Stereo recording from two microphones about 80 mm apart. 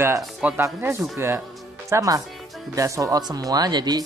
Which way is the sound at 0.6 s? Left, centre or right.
Right.